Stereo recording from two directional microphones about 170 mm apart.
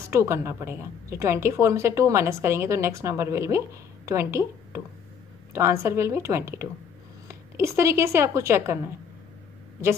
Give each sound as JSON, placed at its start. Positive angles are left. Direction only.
{"t": 0.1, "sound": "a woman's voice", "side_deg": -15}